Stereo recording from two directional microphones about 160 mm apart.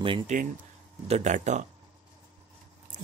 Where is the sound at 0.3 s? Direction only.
50° right (ahead or behind).